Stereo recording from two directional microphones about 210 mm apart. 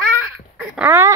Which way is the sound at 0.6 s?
5° right (ahead or behind).